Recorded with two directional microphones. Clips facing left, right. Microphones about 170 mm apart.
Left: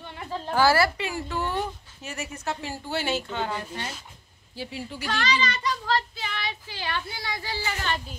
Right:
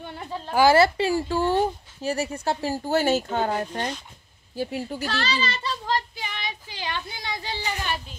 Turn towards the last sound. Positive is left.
turn(degrees=-15)  # may be behind; listen again after turning